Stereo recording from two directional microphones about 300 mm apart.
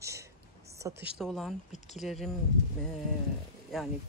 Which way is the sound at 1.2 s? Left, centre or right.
Centre.